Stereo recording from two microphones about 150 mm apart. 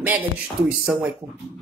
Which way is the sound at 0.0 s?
10° right (ahead or behind).